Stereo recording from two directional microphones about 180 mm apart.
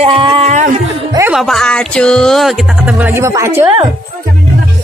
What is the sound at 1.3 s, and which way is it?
Speech, centre (ahead or behind).